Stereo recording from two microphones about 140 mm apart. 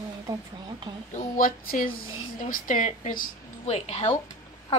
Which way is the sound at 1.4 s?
80° left.